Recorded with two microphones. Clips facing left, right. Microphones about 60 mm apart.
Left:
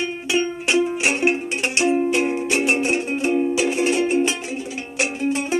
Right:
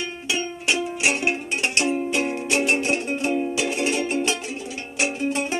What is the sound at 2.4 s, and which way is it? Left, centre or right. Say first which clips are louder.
Music: left 2 dB; centre.